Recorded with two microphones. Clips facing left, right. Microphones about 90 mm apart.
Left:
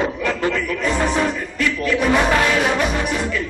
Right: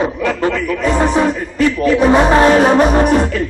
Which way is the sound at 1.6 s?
30° right (ahead or behind).